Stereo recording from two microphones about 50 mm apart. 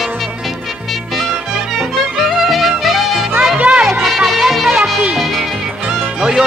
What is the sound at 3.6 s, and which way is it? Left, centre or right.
Music, right.